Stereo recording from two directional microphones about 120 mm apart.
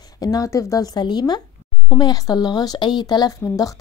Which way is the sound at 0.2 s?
30° left (ahead or behind).